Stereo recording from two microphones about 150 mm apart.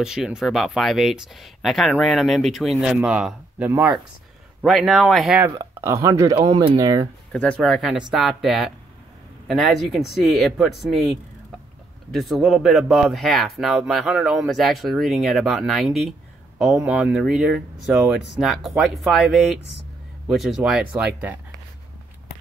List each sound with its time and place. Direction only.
0.0 s speech: 5° right (ahead or behind)
4.6 s speech: centre (ahead or behind)
5.6 s speech: 20° right (ahead or behind)
6.4 s speech: 35° right (ahead or behind)
7.3 s speech: 5° left (ahead or behind)